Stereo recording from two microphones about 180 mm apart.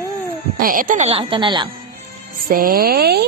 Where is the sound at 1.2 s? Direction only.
25° right (ahead or behind).